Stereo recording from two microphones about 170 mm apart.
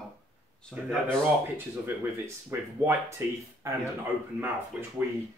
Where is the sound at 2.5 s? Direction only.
15° right (ahead or behind).